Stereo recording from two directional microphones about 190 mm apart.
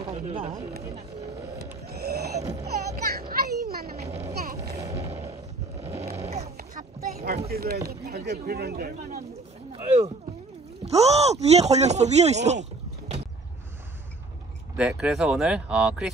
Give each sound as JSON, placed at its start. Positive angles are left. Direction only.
{"t": 0.0, "sound": "speech", "side_deg": -25}
{"t": 1.6, "sound": "a sound", "side_deg": -55}
{"t": 3.1, "sound": "children playing", "side_deg": -55}
{"t": 4.3, "sound": "a sound", "side_deg": -55}
{"t": 4.9, "sound": "a sound", "side_deg": -30}
{"t": 6.4, "sound": "boat", "side_deg": -50}
{"t": 7.4, "sound": "speech", "side_deg": -55}
{"t": 10.9, "sound": "speech", "side_deg": -35}
{"t": 14.8, "sound": "speech", "side_deg": -5}